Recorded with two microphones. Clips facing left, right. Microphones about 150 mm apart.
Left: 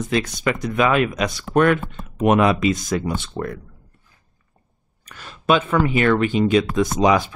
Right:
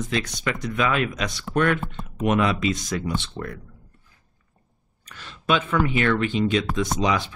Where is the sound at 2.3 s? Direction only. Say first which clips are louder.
Left 5 dB; 55° left (ahead or behind).